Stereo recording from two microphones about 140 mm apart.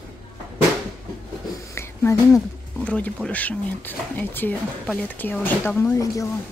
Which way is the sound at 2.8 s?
10° left (ahead or behind).